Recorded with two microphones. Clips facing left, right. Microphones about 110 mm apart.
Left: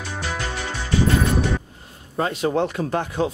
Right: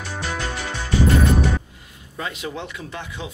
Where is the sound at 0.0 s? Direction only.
Centre (ahead or behind).